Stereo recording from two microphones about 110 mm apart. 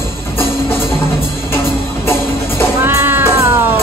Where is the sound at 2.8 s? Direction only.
20° right (ahead or behind).